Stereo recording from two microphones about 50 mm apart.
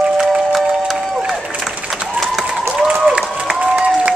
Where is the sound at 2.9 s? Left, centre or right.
Right.